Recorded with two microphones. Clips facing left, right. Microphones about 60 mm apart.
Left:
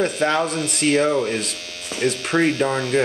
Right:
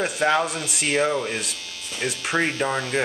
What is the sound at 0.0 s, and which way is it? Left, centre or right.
Speech, centre.